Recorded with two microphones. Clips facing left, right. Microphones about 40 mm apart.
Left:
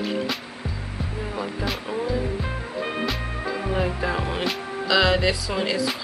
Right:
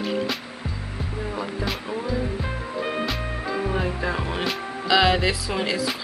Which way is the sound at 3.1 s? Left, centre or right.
Centre.